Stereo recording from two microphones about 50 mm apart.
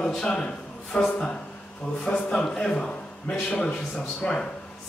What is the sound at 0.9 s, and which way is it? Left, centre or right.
A man's voice, left.